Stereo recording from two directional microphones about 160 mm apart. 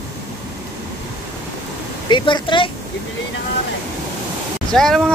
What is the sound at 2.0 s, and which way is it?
Speech, 30° left (ahead or behind).